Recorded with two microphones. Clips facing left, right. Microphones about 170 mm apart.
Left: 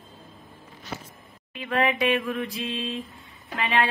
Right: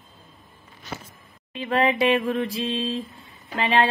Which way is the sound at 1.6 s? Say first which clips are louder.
Right 3 dB; 30° right (ahead or behind).